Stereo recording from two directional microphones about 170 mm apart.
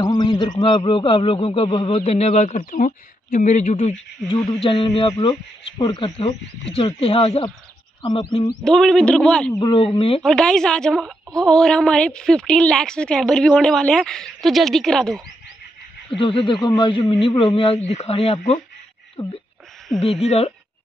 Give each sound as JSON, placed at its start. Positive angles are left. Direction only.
{"t": 0.0, "sound": "a man's voice", "side_deg": 25}
{"t": 4.6, "sound": "a man's voice", "side_deg": 30}
{"t": 8.6, "sound": "a woman's voice", "side_deg": 0}
{"t": 9.5, "sound": "a man's voice", "side_deg": 25}
{"t": 10.2, "sound": "a woman's voice", "side_deg": 5}
{"t": 16.2, "sound": "a man's voice", "side_deg": 30}